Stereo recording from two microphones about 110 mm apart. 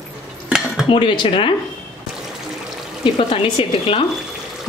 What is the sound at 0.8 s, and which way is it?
Speech, 50° left (ahead or behind).